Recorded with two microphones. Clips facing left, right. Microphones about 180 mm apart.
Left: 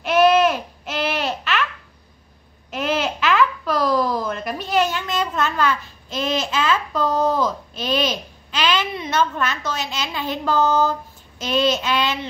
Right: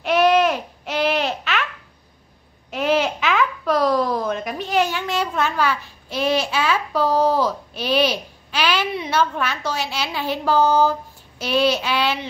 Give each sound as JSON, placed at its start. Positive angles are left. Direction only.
{"t": 0.0, "sound": "babbling", "side_deg": -15}
{"t": 2.7, "sound": "babbling", "side_deg": -15}
{"t": 3.8, "sound": "a sound", "side_deg": -15}